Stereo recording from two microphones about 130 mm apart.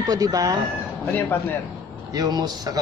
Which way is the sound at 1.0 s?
15° left (ahead or behind).